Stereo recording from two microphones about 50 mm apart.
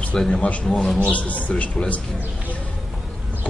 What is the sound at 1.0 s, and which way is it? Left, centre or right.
Speech, left.